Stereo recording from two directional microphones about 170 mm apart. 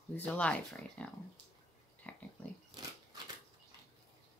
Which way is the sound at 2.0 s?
10° left (ahead or behind).